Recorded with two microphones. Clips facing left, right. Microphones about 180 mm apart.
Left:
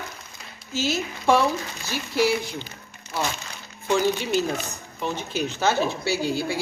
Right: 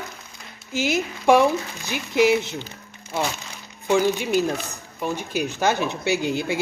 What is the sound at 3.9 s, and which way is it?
Speech, 10° right (ahead or behind).